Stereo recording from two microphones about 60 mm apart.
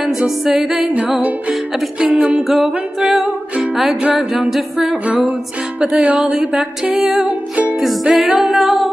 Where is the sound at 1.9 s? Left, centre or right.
Centre.